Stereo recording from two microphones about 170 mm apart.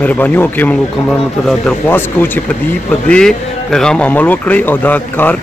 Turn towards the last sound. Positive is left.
turn(degrees=10)  # may be behind; listen again after turning